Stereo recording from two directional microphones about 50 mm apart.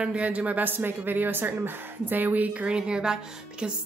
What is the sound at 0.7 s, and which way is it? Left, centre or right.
A woman's voice, right.